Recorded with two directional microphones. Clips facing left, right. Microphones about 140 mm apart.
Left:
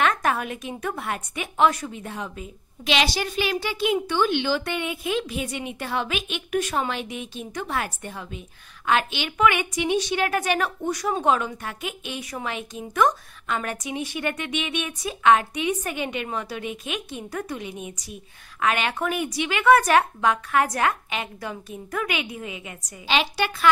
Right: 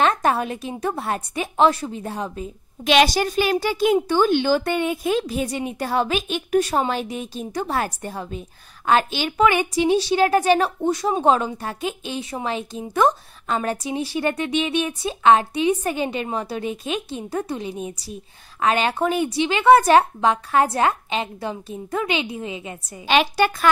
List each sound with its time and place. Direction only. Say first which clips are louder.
0.0 s a woman's voice: right 4 dB; 30° right (ahead or behind)
2.8 s a woman's voice: right 7 dB; 50° right (ahead or behind); by 22.9 s 30° right (ahead or behind)
23.0 s a woman's voice: right 6 dB; 50° right (ahead or behind)